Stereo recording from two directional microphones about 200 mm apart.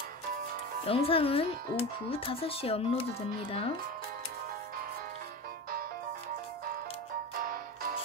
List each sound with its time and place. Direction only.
0.8 s speech: 30° left (ahead or behind)
7.4 s music: 45° right (ahead or behind)